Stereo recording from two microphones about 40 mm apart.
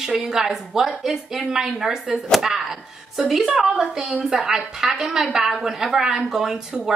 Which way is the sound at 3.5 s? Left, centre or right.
Right.